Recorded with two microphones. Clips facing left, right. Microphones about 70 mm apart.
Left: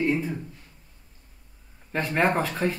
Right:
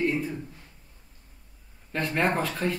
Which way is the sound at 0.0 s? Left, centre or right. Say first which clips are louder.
Left 2 dB; centre.